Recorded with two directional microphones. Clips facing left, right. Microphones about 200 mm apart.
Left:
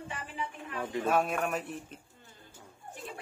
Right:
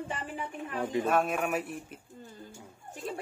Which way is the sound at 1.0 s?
Centre (ahead or behind).